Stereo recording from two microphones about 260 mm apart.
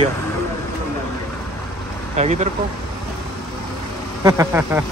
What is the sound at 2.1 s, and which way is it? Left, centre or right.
Speech, right.